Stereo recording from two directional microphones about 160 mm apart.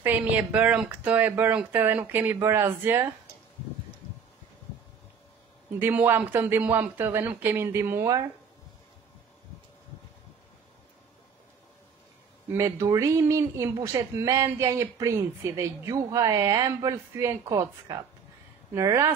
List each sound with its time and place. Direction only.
0.0 s speech: 10° right (ahead or behind)
5.8 s speech: 15° right (ahead or behind)
12.5 s speech: 20° right (ahead or behind)